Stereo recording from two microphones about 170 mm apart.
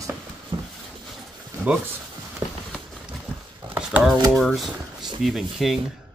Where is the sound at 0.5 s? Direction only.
25° right (ahead or behind).